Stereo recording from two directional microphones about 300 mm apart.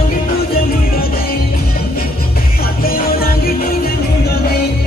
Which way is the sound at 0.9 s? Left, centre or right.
Left.